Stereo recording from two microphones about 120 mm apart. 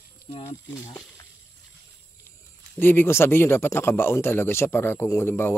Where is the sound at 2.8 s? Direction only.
15° left (ahead or behind).